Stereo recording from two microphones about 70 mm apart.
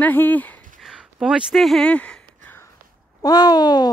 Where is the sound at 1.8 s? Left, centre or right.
Centre.